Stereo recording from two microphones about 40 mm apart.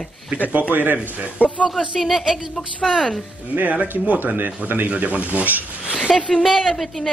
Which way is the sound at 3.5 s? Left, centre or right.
Right.